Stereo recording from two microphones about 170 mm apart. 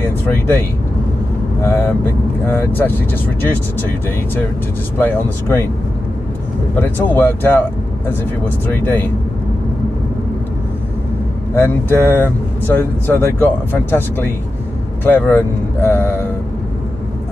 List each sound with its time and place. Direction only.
1.6 s speech: 15° left (ahead or behind)
4.9 s speech: 10° left (ahead or behind)
6.8 s speech: 10° left (ahead or behind)
8.8 s speech: 10° left (ahead or behind)
11.5 s speech: 15° left (ahead or behind)